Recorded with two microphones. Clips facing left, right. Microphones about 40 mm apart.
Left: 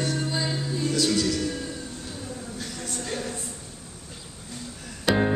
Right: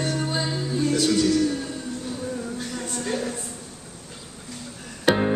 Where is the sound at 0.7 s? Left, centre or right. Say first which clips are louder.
Right 4 dB; right.